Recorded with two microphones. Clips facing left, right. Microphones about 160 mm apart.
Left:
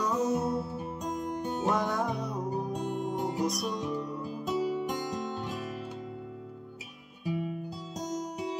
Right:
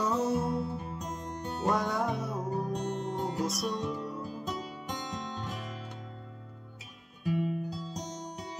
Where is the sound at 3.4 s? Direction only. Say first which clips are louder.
Left 2 dB; centre (ahead or behind).